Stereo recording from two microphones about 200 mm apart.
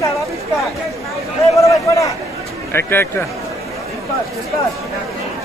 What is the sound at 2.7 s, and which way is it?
Speech, 10° left (ahead or behind).